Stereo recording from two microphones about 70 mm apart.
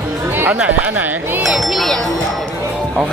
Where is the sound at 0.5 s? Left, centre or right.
Centre.